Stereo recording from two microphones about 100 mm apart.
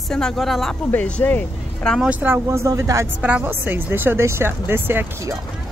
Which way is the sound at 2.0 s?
15° right (ahead or behind).